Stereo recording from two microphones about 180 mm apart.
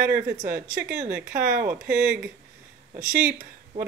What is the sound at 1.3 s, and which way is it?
Speech, 50° right (ahead or behind).